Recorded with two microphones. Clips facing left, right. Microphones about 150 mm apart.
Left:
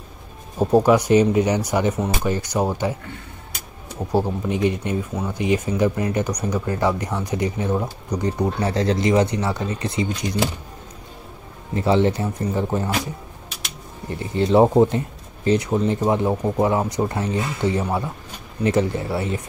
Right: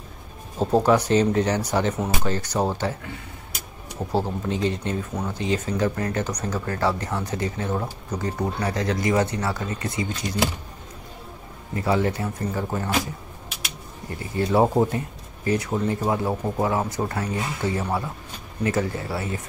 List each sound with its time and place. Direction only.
0.6 s speech: 10° left (ahead or behind)
4.1 s speech: 15° left (ahead or behind)
11.7 s speech: 25° left (ahead or behind)
14.3 s speech: 20° left (ahead or behind)